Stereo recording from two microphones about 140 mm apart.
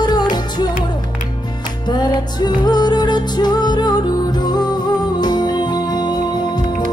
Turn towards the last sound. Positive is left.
turn(degrees=30)  # may be behind; listen again after turning